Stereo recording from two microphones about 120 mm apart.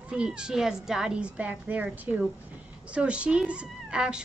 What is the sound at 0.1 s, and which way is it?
A woman's voice, 5° right (ahead or behind).